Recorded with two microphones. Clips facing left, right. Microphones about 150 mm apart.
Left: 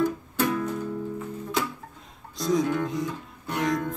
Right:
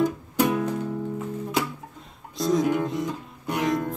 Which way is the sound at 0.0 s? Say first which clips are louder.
Right 2 dB; 20° right (ahead or behind).